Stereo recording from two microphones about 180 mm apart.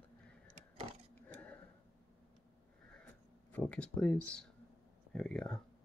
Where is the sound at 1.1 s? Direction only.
10° left (ahead or behind).